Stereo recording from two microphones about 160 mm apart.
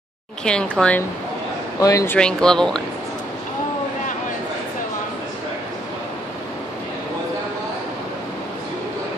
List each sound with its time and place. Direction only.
0.4 s speech: 5° left (ahead or behind)
1.8 s speech: 20° left (ahead or behind)
2.1 s speech: 5° left (ahead or behind)